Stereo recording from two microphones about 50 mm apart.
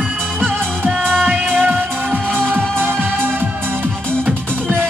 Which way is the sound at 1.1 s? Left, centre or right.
Right.